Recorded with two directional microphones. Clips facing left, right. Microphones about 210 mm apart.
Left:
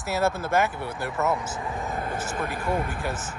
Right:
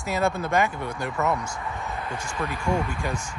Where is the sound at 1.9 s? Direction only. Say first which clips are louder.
Left 2 dB; 50° left (ahead or behind).